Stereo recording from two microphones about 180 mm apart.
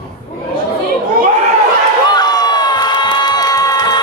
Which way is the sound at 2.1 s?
25° left (ahead or behind).